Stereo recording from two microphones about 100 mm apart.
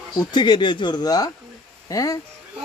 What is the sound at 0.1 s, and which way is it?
Speech, 45° left (ahead or behind).